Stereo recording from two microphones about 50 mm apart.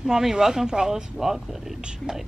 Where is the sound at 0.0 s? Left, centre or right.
Centre.